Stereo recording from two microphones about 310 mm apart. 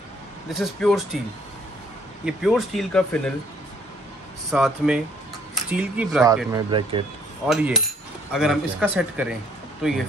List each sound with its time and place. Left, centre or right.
0.5 s speech: centre
2.2 s speech: centre
4.5 s speech: centre
6.5 s speech: centre
7.4 s speech: centre